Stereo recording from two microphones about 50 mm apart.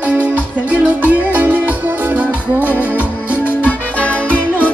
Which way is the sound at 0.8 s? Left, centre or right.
Right.